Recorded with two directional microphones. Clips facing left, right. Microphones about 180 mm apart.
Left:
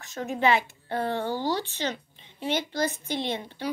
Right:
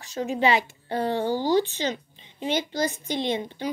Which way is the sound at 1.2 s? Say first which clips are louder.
Right 3 dB; centre (ahead or behind).